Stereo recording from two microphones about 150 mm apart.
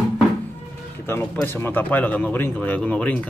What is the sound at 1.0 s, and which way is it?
Speech, 15° left (ahead or behind).